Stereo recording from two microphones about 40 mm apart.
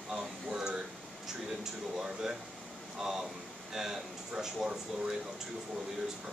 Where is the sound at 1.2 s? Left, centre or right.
Centre.